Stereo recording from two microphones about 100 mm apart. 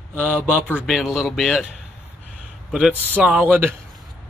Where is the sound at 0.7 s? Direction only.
5° right (ahead or behind).